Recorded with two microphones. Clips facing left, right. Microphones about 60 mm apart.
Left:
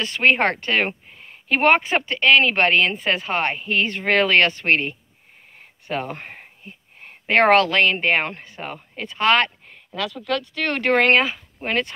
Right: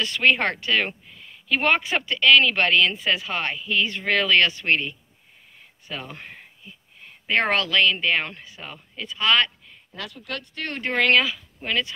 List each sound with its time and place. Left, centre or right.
0.0 s speech: left
10.5 s speech: left
10.9 s speech: left